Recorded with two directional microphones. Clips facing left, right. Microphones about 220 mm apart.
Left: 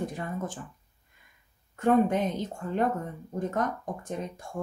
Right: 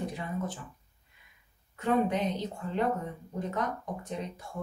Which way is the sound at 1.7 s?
50° left (ahead or behind).